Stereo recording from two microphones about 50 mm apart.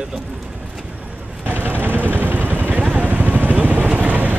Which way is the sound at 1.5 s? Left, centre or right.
Right.